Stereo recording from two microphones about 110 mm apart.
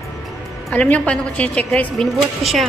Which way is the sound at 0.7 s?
15° left (ahead or behind).